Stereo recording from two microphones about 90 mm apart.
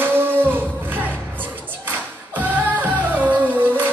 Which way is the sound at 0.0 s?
25° right (ahead or behind).